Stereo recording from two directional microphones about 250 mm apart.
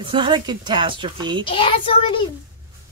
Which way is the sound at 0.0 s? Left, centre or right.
Centre.